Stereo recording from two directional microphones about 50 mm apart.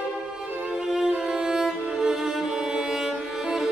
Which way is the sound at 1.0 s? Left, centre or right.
Centre.